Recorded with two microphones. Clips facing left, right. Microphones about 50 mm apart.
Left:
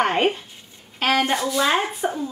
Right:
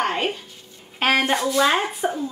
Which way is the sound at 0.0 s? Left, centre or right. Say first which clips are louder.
Left 4 dB; left.